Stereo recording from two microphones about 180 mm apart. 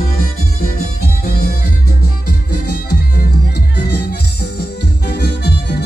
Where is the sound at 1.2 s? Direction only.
55° left (ahead or behind).